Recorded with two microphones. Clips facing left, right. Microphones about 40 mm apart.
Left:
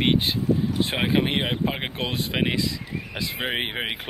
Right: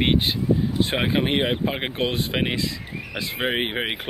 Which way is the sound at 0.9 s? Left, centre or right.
Centre.